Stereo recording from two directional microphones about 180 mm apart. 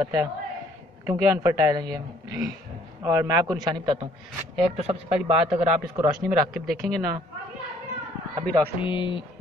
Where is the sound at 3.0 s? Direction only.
20° right (ahead or behind).